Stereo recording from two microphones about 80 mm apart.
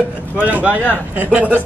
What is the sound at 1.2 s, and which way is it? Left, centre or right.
Speech, centre.